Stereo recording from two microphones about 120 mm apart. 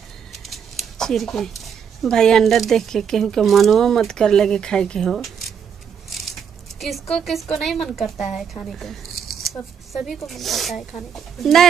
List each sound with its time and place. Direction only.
0.3 s a sound: centre (ahead or behind)
2.0 s a woman's voice: 5° left (ahead or behind)
6.8 s a woman's voice: centre (ahead or behind)